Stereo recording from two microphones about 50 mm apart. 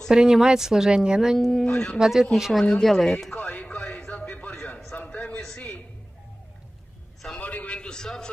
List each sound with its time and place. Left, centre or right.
0.1 s a woman's voice: centre
1.5 s speech: centre
2.0 s a woman's voice: centre
2.8 s speech: centre
3.3 s music: left
4.0 s a sound: left
7.3 s a sound: left; by 8.3 s centre